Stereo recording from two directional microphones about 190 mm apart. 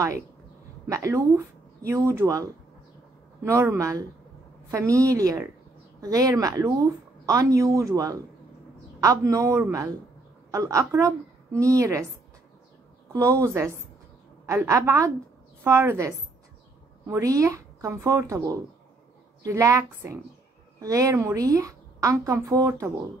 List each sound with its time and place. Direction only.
0.8 s a woman's voice: 15° right (ahead or behind)
13.1 s a woman's voice: 15° right (ahead or behind)